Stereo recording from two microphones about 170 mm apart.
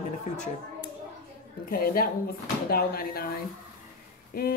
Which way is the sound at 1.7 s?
60° left (ahead or behind).